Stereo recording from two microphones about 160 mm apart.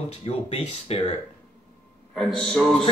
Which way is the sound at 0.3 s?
40° left (ahead or behind).